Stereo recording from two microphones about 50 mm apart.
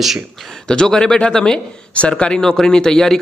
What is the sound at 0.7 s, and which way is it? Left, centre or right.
Speech, centre.